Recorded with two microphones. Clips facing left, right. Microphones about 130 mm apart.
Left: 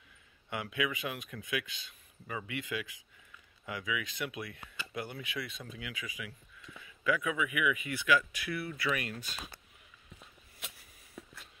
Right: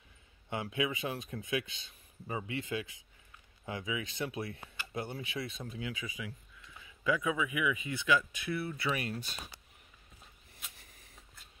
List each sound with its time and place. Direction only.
0.5 s speech: 30° right (ahead or behind)